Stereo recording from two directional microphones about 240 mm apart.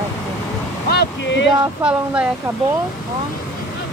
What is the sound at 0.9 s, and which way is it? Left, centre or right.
Speech, left.